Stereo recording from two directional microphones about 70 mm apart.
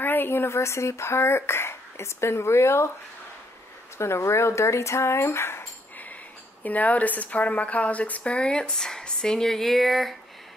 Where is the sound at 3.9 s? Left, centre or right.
Left.